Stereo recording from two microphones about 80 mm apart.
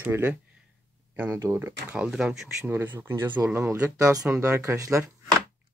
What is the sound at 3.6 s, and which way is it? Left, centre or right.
Speech, right.